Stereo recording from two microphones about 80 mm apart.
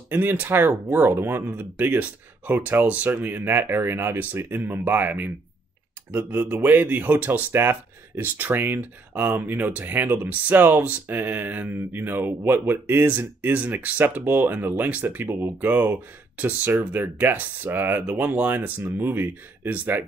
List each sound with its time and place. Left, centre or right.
0.1 s speech: right